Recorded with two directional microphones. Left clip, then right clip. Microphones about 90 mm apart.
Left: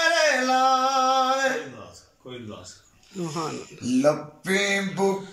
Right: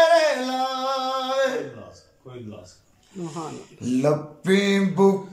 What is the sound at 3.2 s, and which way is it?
Wheeze, 15° right (ahead or behind).